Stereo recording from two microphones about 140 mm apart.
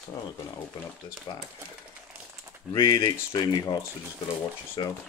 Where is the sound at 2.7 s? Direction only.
25° left (ahead or behind).